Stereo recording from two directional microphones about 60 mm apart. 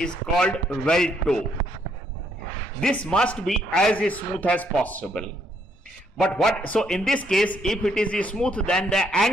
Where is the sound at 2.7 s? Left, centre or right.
Centre.